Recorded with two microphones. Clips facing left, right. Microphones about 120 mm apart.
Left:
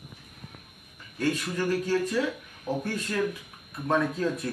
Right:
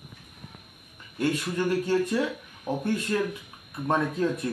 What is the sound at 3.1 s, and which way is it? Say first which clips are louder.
Speech: right 1 dB; 25° right (ahead or behind).